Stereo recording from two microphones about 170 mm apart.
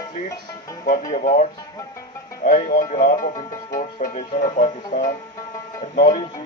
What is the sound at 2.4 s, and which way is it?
Speech, 50° left (ahead or behind).